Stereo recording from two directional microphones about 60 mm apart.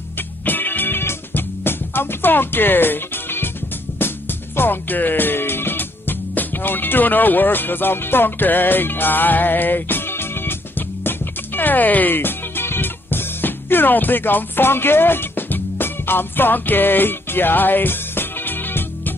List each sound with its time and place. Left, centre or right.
0.5 s music: left
4.6 s speech: left
11.1 s music: left